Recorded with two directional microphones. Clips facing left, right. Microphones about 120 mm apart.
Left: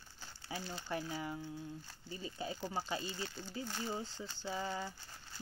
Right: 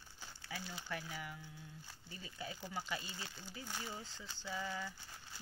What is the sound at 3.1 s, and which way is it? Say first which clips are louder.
Speech: left 7 dB; 15° right (ahead or behind).